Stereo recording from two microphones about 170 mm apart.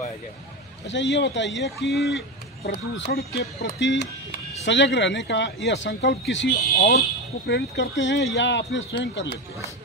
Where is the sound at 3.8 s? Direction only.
90° left; by 6.9 s 70° left (ahead or behind).